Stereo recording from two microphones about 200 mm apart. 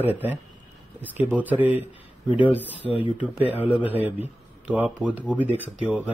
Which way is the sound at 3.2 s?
10° right (ahead or behind).